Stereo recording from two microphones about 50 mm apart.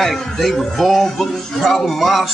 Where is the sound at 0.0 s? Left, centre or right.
Centre.